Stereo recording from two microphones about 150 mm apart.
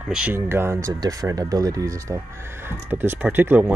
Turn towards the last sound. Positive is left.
turn(degrees=-10)  # may be behind; listen again after turning